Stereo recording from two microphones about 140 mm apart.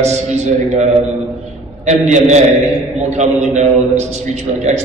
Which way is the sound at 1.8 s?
55° right (ahead or behind).